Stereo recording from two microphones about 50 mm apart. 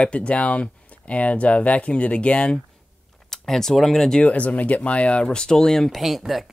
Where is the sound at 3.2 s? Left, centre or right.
Centre.